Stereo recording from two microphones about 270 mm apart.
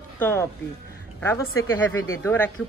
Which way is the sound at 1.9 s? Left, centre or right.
Centre.